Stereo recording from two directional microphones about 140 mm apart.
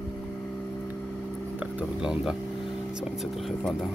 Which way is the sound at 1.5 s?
10° right (ahead or behind).